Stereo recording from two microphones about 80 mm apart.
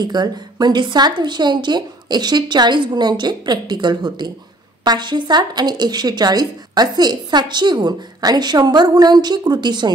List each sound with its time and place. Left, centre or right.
0.0 s a woman's voice: right